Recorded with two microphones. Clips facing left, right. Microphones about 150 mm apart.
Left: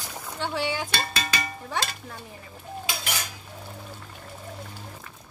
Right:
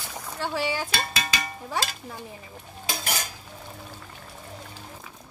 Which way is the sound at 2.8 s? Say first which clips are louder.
Right 3 dB; 40° right (ahead or behind).